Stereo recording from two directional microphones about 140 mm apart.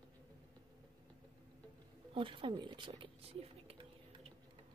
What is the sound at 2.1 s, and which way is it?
Speech, 40° right (ahead or behind).